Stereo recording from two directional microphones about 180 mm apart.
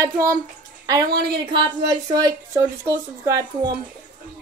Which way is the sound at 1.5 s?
25° right (ahead or behind).